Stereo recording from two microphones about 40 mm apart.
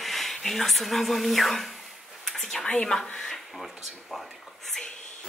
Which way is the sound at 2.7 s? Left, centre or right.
Centre.